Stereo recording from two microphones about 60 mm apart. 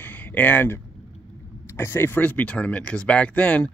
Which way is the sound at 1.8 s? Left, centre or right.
Left.